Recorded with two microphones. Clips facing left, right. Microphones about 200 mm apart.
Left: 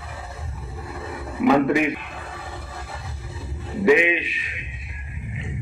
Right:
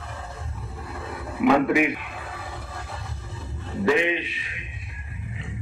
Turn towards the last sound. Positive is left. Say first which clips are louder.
# left 4 dB
turn(degrees=15)  # may be behind; listen again after turning